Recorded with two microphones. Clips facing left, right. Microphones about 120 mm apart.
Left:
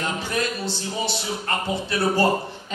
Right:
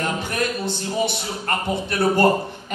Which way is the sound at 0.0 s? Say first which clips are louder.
Right 2 dB; 55° right (ahead or behind).